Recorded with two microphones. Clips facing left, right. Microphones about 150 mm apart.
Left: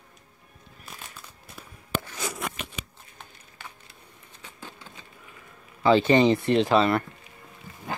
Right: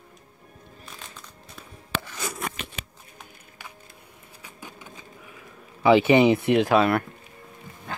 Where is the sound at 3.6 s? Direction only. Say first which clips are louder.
Even; 10° right (ahead or behind).